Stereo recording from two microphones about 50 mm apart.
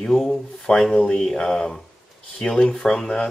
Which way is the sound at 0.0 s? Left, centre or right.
Centre.